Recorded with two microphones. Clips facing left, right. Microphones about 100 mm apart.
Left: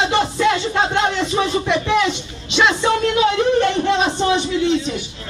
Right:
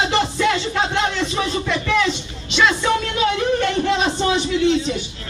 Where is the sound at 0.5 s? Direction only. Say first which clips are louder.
Left 2 dB; 15° left (ahead or behind).